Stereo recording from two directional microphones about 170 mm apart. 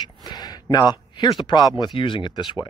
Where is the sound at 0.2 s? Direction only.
25° left (ahead or behind).